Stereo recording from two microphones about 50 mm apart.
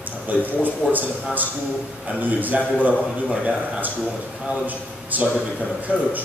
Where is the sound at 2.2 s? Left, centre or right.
Right.